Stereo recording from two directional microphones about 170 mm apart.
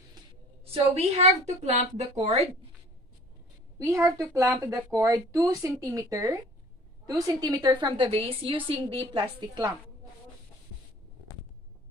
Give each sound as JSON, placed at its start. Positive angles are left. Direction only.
{"t": 0.9, "sound": "a woman's voice", "side_deg": -40}
{"t": 3.7, "sound": "a woman's voice", "side_deg": -20}